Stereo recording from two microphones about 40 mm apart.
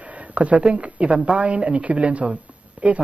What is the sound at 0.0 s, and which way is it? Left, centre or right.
Speech, right.